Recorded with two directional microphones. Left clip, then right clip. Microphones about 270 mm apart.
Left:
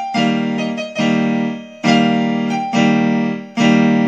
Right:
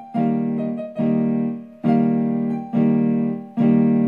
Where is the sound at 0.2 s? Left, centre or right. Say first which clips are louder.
Left 2 dB; left.